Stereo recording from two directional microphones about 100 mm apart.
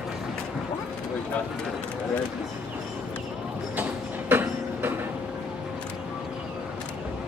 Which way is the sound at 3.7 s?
20° right (ahead or behind).